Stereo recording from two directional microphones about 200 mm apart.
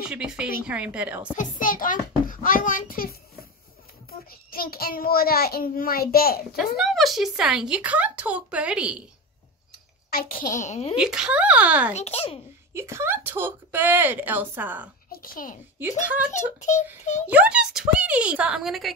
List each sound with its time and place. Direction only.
0.0 s a woman's voice: 5° right (ahead or behind)
1.3 s a child's voice: 40° left (ahead or behind)
6.8 s speech: centre (ahead or behind)
10.0 s a child's voice: 45° left (ahead or behind)
10.5 s speech: 35° left (ahead or behind)
11.0 s speech: 5° right (ahead or behind)
11.9 s speech: 30° left (ahead or behind)
12.7 s speech: 15° right (ahead or behind)
15.0 s a child's voice: 45° left (ahead or behind)
16.6 s speech: 35° left (ahead or behind)
17.3 s speech: 5° right (ahead or behind)